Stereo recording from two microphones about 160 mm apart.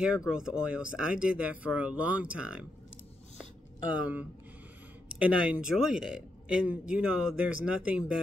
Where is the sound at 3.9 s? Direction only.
10° right (ahead or behind).